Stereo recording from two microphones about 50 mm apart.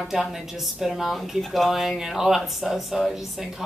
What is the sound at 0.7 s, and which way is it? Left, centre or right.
A woman's voice, centre.